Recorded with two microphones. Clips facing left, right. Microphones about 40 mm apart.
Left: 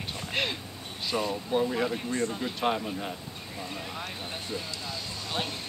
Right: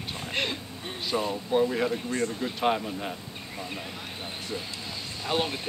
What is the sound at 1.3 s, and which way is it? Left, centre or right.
Speech, centre.